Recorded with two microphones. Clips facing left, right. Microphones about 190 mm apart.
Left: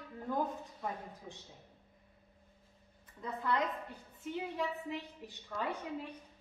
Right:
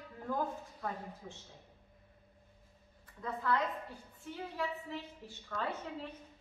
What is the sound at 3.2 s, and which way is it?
A woman's voice, 20° left (ahead or behind).